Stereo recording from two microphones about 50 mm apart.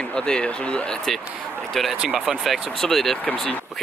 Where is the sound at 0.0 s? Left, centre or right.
Centre.